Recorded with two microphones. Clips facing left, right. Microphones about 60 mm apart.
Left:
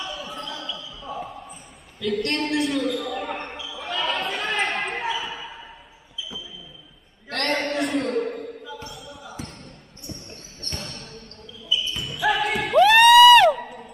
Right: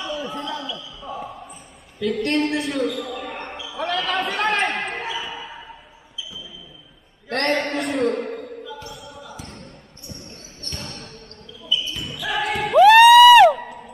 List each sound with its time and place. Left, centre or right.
0.6 s basketball bounce: centre
2.0 s a woman's voice: centre
3.3 s basketball bounce: centre
3.7 s basketball bounce: right
4.3 s chatter: right
4.6 s basketball bounce: centre
7.2 s a sound: right
7.5 s a sound: centre
12.3 s music: centre